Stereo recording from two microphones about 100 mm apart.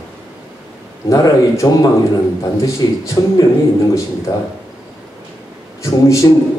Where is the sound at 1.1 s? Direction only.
35° left (ahead or behind).